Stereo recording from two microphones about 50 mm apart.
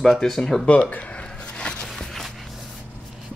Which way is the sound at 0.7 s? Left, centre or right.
Left.